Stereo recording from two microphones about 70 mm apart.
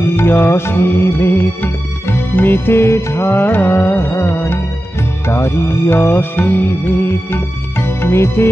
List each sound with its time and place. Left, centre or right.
0.0 s music: left